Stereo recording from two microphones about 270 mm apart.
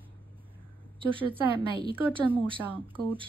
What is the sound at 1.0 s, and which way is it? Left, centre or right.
A woman's voice, centre.